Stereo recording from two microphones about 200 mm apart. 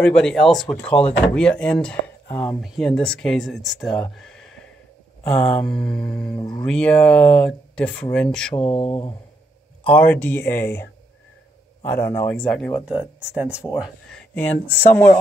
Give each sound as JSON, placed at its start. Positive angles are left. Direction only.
{"t": 0.0, "sound": "speech", "side_deg": 5}
{"t": 4.1, "sound": "a sound", "side_deg": 0}
{"t": 5.2, "sound": "speech", "side_deg": 5}
{"t": 8.5, "sound": "speech", "side_deg": 30}
{"t": 9.8, "sound": "speech", "side_deg": 5}
{"t": 13.3, "sound": "speech", "side_deg": -5}
{"t": 13.7, "sound": "speech", "side_deg": 5}